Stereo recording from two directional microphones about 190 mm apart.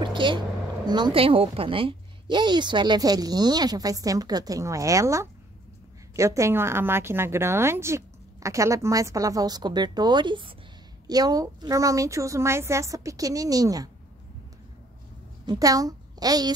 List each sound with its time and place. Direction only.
0.0 s a sound: 25° right (ahead or behind)
0.8 s a woman's voice: 25° right (ahead or behind)
15.4 s a child's voice: 20° right (ahead or behind)